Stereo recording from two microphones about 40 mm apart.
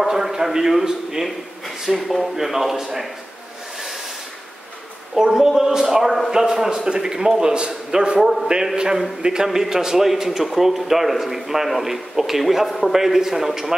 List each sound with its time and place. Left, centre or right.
0.0 s a man's voice: centre
2.0 s a man's voice: centre
2.3 s a man's voice: centre
5.1 s a man's voice: centre
6.3 s a man's voice: centre
8.2 s a man's voice: centre
9.2 s a man's voice: centre